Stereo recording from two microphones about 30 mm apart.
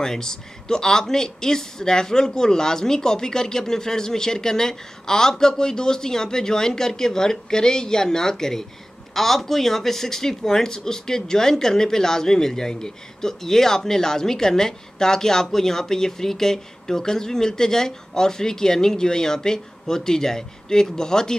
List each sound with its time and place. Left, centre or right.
0.0 s speech: centre
9.1 s speech: centre